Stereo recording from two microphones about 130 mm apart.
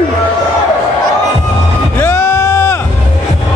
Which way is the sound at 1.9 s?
20° left (ahead or behind).